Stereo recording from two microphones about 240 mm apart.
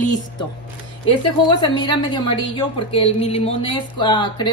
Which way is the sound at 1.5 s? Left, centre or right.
Centre.